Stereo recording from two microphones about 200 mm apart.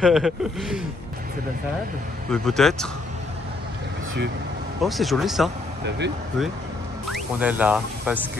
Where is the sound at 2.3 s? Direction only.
Centre (ahead or behind).